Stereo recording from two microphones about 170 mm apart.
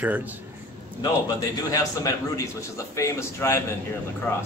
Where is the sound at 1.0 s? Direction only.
20° left (ahead or behind).